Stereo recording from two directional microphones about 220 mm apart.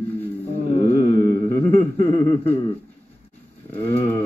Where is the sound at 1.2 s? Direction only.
15° left (ahead or behind).